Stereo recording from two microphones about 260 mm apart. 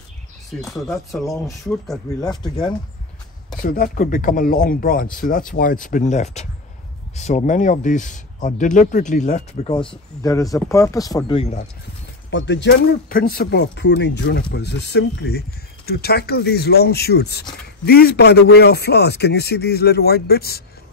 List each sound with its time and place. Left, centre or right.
0.6 s speech: centre
1.2 s speech: centre
3.6 s speech: left
12.3 s speech: left